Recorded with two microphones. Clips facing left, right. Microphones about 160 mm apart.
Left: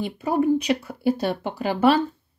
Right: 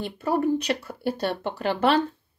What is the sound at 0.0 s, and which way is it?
Speech, 10° left (ahead or behind).